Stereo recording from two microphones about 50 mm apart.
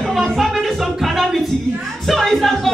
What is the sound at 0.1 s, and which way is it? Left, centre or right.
Music, centre.